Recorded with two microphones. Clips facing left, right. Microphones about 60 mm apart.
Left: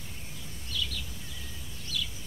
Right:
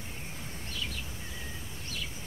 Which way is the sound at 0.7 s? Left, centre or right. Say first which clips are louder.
Left 4 dB; right.